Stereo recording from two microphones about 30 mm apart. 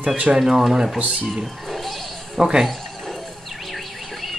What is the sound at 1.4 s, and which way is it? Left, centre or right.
Music, centre.